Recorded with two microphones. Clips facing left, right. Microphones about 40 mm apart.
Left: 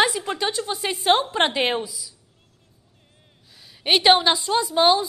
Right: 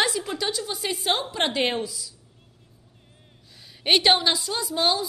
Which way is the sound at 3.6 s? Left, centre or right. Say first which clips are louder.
Left 1 dB; centre.